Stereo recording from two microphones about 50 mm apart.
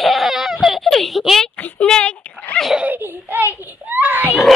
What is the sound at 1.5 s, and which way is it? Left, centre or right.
Child singing, left.